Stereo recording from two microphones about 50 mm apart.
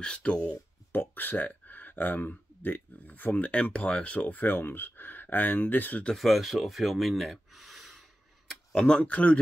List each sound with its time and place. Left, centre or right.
0.0 s speech: left
0.9 s speech: left
6.1 s speech: centre
8.7 s speech: centre
9.0 s speech: left